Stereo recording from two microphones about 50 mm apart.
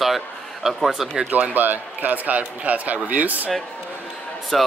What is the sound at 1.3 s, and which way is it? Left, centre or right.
A man's voice, right.